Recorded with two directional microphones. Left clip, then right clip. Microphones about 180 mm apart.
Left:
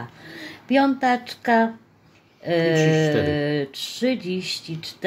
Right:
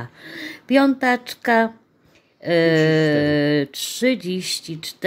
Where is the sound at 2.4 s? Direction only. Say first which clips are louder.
Right 3 dB; 40° right (ahead or behind).